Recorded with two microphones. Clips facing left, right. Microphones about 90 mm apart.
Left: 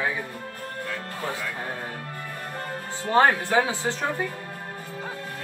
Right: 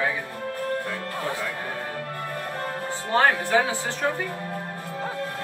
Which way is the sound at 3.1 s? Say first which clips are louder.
Left 2 dB; 20° left (ahead or behind).